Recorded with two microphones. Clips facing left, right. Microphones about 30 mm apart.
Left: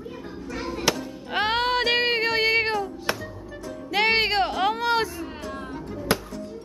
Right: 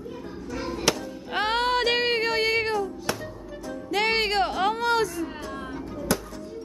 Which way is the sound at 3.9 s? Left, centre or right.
Centre.